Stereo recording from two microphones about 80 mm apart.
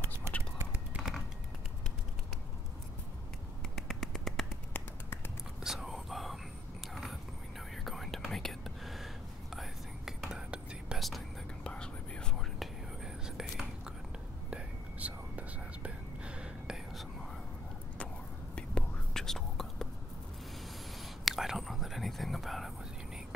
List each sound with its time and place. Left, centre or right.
0.9 s a sound: centre
3.7 s finger snapping: centre
4.7 s finger snapping: left
5.6 s whispering: centre
7.7 s whispering: centre
11.0 s whispering: centre
11.6 s whispering: centre
12.5 s whispering: centre
14.5 s whispering: centre
17.9 s whispering: centre
21.0 s whispering: centre